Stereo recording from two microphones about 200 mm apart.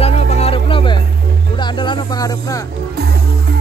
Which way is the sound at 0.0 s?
30° left (ahead or behind).